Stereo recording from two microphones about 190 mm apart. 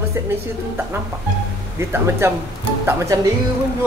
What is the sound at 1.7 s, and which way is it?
A woman's voice, 15° right (ahead or behind).